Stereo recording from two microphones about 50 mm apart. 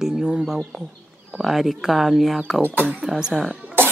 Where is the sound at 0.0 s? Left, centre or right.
Centre.